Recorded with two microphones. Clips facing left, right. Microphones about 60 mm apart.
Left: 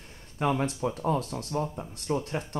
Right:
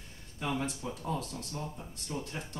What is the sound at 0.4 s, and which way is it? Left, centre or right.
Speech, left.